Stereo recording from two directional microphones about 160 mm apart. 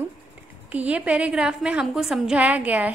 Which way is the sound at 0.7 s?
10° right (ahead or behind).